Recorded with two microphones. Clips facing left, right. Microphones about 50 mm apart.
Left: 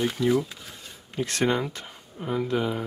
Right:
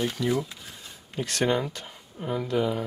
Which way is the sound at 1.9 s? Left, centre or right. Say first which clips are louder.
Left 1 dB; centre.